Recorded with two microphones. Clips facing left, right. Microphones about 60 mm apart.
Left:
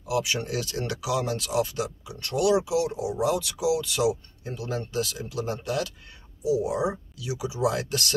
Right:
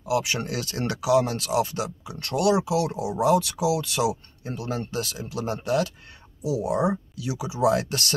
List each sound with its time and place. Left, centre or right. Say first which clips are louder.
0.1 s speech: right 2 dB; right
6.4 s speech: right 1 dB; right